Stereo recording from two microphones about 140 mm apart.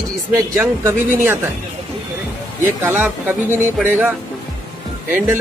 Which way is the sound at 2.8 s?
15° right (ahead or behind).